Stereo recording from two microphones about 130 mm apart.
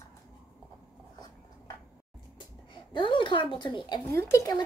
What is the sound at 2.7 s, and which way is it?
Speech, 40° left (ahead or behind).